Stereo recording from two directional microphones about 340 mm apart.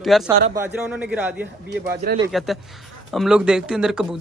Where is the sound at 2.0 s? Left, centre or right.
Right.